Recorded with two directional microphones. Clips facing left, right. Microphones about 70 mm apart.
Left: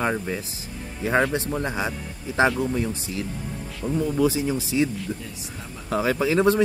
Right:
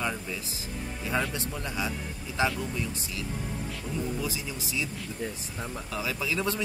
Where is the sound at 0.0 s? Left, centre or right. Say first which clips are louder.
Left 7 dB; left.